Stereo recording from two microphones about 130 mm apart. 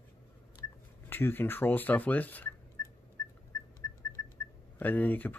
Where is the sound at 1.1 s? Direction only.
15° left (ahead or behind).